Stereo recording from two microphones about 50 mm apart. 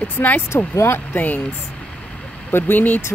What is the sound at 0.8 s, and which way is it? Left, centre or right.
Speech, left.